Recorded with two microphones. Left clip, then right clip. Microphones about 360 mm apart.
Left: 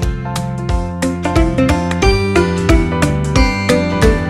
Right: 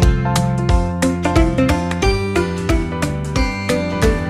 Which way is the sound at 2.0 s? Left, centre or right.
Left.